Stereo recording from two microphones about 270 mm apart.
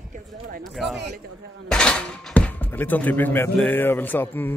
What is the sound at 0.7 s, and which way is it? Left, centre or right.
Speech, centre.